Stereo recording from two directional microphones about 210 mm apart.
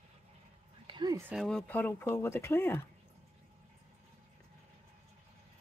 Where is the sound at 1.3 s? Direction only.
Centre (ahead or behind).